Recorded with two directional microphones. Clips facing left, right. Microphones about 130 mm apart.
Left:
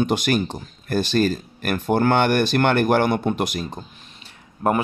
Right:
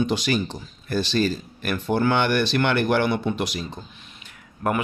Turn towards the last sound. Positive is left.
turn(degrees=25)  # may be behind; listen again after turning